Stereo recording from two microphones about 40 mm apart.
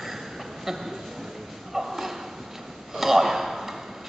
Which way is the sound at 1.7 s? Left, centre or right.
Centre.